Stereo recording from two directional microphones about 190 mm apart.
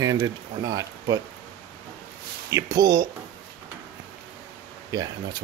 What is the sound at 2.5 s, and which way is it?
Speech, 20° right (ahead or behind).